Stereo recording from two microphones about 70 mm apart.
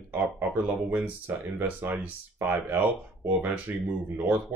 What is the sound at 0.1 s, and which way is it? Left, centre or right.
Speech, right.